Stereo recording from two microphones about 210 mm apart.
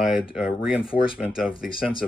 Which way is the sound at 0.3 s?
5° right (ahead or behind).